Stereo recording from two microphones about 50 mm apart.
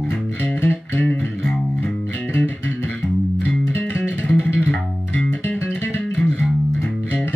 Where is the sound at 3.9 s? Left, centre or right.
Left.